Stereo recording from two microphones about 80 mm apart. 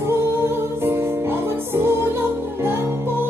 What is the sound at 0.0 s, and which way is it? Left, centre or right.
Music, right.